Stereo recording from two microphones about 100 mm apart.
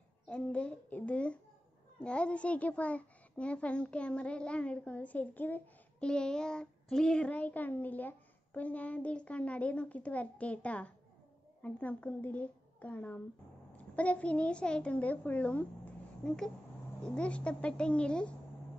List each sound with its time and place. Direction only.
0.3 s a child's voice: 10° left (ahead or behind)